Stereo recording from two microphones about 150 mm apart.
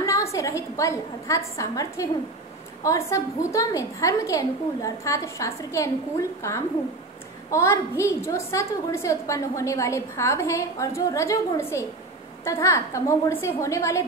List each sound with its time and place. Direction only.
0.0 s a woman's voice: 20° left (ahead or behind)